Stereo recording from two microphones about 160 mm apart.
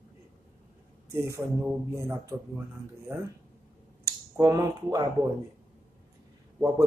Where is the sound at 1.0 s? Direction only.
20° right (ahead or behind).